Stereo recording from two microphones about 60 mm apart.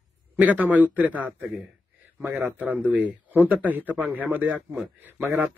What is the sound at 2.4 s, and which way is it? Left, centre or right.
Speech, right.